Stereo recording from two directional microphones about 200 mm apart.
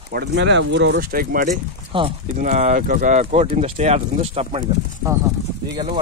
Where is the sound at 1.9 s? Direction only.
30° right (ahead or behind).